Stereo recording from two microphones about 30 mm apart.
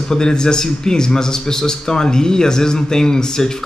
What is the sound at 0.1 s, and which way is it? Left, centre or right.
A man's voice, left.